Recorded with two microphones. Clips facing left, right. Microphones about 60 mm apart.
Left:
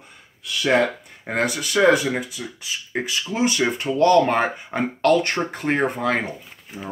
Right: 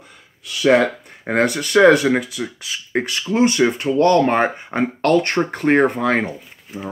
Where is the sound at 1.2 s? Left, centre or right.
Right.